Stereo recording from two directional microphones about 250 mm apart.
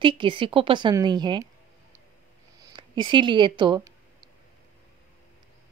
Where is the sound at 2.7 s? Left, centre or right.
Centre.